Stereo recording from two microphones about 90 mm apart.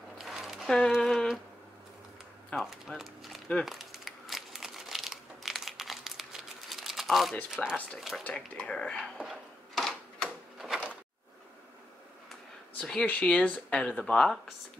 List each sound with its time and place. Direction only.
0.2 s a sound: 5° right (ahead or behind)
2.5 s speech: centre (ahead or behind)
3.6 s crumpling: centre (ahead or behind)
7.6 s speech: centre (ahead or behind)
8.2 s speech: 10° left (ahead or behind)
9.2 s a sound: centre (ahead or behind)
13.0 s speech: 15° left (ahead or behind)